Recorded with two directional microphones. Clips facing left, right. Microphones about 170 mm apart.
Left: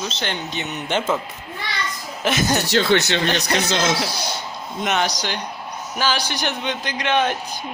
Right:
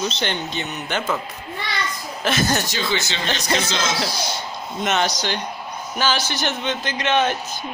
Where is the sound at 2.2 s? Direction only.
15° left (ahead or behind).